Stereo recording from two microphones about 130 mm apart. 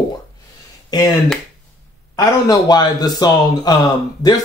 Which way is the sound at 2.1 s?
30° left (ahead or behind).